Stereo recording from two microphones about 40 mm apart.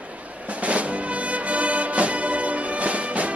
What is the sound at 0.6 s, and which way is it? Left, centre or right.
Music, right.